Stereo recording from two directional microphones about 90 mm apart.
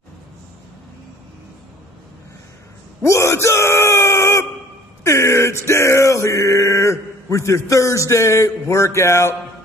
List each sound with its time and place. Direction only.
3.0 s speech: 35° left (ahead or behind)
5.0 s male singing: 30° left (ahead or behind)